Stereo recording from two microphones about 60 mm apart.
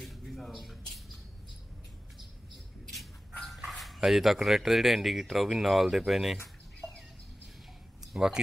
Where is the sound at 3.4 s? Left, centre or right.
Centre.